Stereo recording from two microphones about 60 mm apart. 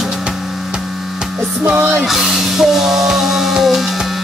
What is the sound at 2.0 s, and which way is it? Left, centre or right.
Music, centre.